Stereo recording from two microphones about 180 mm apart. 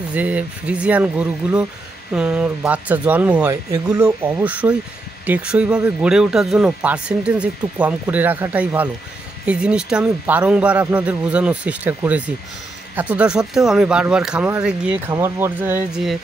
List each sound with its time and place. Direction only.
0.1 s speech: 10° right (ahead or behind)